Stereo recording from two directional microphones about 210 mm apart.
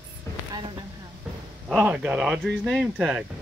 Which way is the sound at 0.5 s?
20° right (ahead or behind).